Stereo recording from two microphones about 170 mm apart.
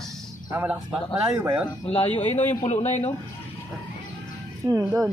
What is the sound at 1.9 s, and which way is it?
Speech, 40° left (ahead or behind).